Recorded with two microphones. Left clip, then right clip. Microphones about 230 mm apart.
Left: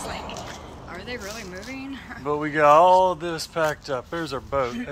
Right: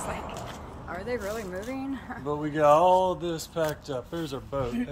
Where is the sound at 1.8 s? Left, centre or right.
Right.